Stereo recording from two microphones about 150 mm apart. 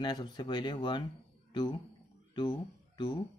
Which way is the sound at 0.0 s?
30° left (ahead or behind).